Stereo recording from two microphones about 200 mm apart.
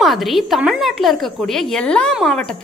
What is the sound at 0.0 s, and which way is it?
A woman's voice, centre (ahead or behind).